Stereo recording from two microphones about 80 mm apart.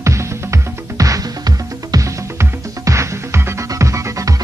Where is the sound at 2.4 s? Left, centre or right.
Right.